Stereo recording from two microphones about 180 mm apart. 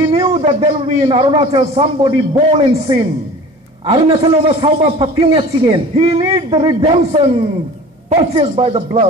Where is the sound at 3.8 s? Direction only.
30° right (ahead or behind).